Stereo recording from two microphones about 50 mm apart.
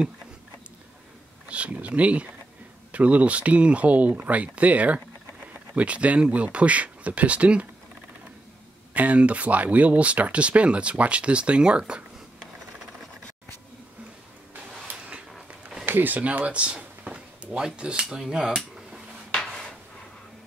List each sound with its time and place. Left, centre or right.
1.5 s speech: right
8.9 s speech: right
15.8 s a sound: right
17.6 s speech: centre